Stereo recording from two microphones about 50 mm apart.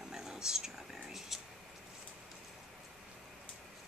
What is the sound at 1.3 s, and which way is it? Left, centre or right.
Speech, centre.